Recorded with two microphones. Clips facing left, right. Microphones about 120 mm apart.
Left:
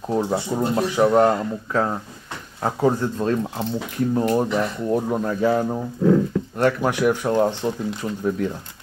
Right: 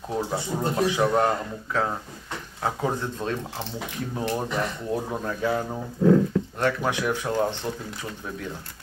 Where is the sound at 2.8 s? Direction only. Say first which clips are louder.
Left 11 dB; 5° left (ahead or behind).